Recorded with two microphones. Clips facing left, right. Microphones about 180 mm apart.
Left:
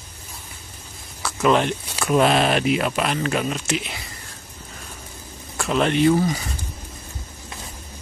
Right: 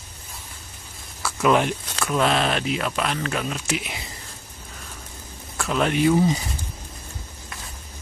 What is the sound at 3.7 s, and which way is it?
Speech, 10° right (ahead or behind).